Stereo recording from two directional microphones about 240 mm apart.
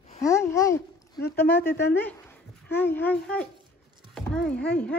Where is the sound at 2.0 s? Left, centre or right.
Centre.